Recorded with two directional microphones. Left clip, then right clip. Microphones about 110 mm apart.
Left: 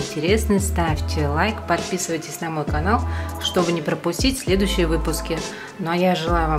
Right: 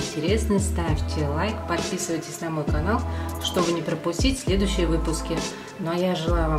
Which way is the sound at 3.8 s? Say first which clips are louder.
Left 3 dB; 40° left (ahead or behind).